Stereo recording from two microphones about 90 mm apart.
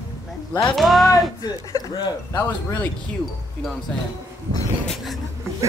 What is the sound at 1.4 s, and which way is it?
Speech, 45° left (ahead or behind).